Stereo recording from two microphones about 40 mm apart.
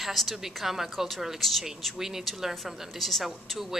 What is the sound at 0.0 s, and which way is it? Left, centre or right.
A woman's voice, centre.